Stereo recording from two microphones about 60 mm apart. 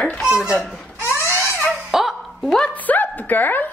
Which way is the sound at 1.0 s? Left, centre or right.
Left.